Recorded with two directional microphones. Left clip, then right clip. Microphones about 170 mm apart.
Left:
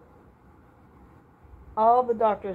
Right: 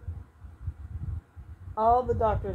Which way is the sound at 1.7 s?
5° left (ahead or behind).